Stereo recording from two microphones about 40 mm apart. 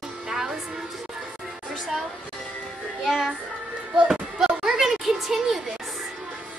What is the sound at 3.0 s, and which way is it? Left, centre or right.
Music, centre.